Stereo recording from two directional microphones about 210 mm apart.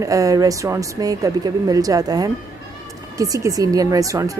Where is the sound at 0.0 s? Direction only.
15° right (ahead or behind).